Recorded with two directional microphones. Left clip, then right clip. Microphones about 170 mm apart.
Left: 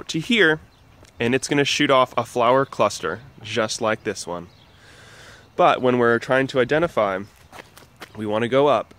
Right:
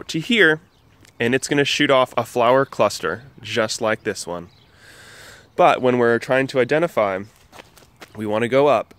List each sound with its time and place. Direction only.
0.0 s speech: 15° right (ahead or behind)